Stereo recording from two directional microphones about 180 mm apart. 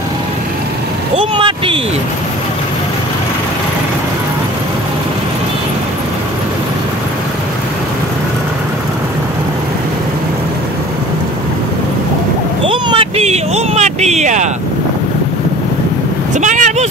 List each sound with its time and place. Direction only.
1.1 s speech: 30° right (ahead or behind)
12.6 s a sound: 30° right (ahead or behind)
16.3 s vehicle: 45° right (ahead or behind)